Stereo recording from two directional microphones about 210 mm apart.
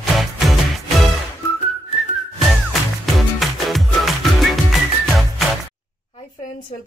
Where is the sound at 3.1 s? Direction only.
Centre (ahead or behind).